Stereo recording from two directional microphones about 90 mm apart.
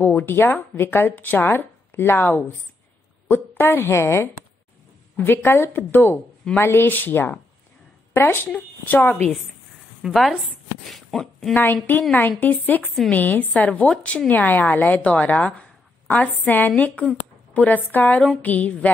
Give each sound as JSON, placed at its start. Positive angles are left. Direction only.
{"t": 0.0, "sound": "a woman's voice", "side_deg": 25}
{"t": 10.0, "sound": "speech", "side_deg": 0}
{"t": 11.5, "sound": "a woman's voice", "side_deg": 20}